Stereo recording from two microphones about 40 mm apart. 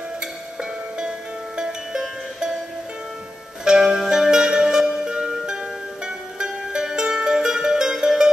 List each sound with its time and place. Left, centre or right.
1.6 s music: centre
3.6 s zither: centre
4.1 s music: centre
6.4 s music: centre